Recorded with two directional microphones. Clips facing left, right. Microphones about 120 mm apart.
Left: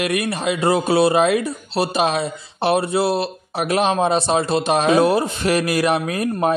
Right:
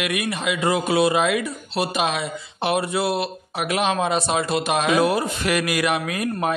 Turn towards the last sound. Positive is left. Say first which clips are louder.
# left 4 dB
turn(degrees=35)  # may be behind; listen again after turning